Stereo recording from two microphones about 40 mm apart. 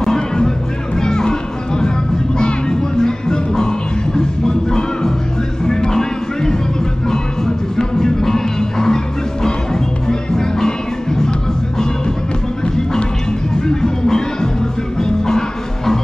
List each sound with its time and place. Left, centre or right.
0.0 s music: centre
2.3 s music: left
12.6 s music: centre